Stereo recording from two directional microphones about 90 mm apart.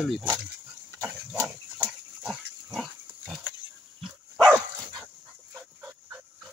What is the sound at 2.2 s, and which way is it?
Pig, centre (ahead or behind).